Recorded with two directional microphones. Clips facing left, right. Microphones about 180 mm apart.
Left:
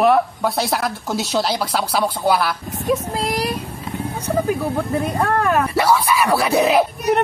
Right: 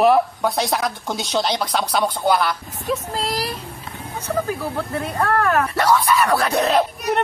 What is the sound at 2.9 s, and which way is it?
Speech, 15° left (ahead or behind).